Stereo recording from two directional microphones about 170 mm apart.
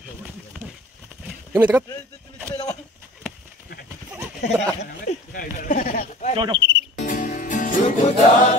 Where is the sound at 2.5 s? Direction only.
20° left (ahead or behind).